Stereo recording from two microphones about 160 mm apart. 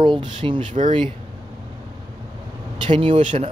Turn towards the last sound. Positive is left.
turn(degrees=-35)  # may be behind; listen again after turning